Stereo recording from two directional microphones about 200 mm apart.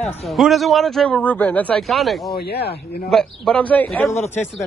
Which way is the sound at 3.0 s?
5° left (ahead or behind).